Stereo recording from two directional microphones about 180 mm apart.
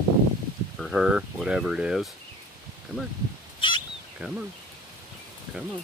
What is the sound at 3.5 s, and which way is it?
Fowl, 25° left (ahead or behind).